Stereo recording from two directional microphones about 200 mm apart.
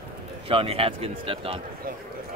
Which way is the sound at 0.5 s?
30° right (ahead or behind).